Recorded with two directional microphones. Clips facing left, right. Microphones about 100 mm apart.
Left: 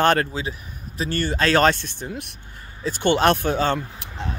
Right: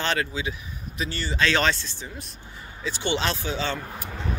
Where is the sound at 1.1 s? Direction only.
50° left (ahead or behind).